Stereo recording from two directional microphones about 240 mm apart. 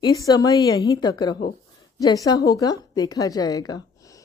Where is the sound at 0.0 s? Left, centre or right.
Centre.